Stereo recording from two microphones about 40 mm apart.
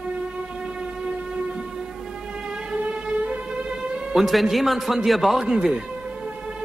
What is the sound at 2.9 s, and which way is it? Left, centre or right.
Music, right.